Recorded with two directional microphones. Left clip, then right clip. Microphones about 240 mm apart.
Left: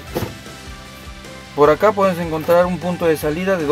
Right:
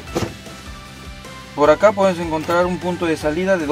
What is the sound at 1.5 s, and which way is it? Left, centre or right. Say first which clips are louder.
Speech: even; left.